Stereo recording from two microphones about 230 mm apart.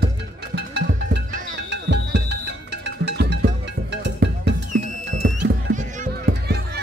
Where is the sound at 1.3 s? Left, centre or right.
Right.